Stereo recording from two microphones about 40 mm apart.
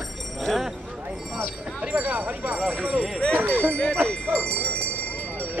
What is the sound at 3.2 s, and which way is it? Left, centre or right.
Speech, left.